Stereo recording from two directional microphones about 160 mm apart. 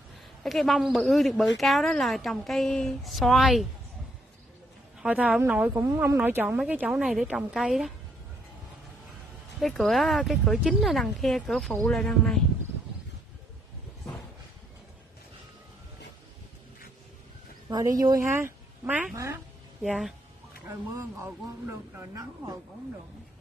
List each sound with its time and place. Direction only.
0.4 s a woman's voice: centre (ahead or behind)
5.0 s a woman's voice: 10° right (ahead or behind)
9.6 s a woman's voice: centre (ahead or behind)
17.6 s speech: 25° right (ahead or behind)
19.8 s a woman's voice: 5° right (ahead or behind)
20.6 s speech: 15° right (ahead or behind)